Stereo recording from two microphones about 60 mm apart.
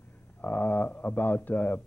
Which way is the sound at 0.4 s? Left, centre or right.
Left.